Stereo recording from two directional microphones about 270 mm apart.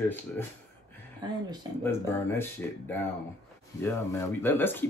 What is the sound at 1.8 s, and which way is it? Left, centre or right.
Speech, centre.